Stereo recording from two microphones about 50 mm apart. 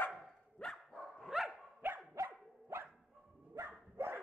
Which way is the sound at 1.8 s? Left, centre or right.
Right.